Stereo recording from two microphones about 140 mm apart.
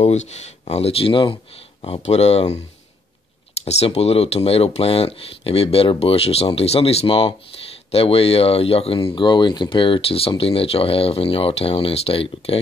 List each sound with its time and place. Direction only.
0.0 s speech: 55° left (ahead or behind)
3.6 s speech: 50° left (ahead or behind)